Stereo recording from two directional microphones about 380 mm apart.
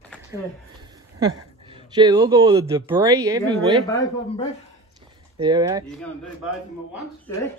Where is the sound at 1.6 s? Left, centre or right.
Centre.